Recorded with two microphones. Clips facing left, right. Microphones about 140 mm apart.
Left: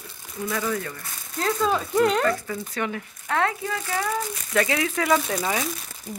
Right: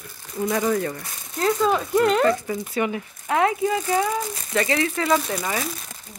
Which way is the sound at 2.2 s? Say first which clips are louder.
Right 4 dB; 20° right (ahead or behind).